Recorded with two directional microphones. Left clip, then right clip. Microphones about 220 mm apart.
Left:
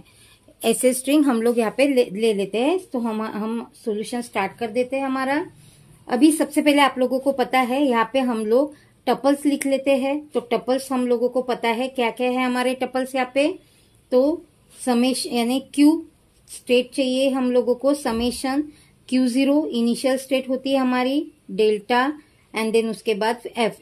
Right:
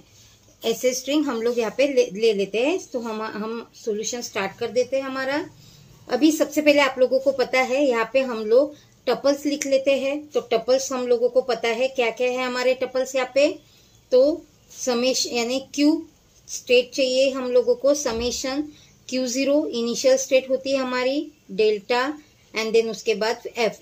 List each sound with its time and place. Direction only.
0.6 s a woman's voice: 50° left (ahead or behind)
14.9 s a woman's voice: 45° left (ahead or behind)